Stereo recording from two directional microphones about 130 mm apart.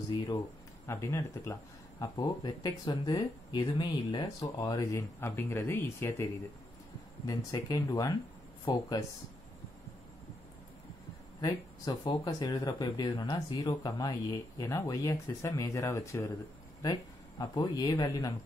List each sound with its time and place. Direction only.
0.8 s speech: 20° left (ahead or behind)
2.0 s speech: 30° left (ahead or behind)
7.2 s speech: 30° left (ahead or behind)
11.4 s speech: 30° left (ahead or behind)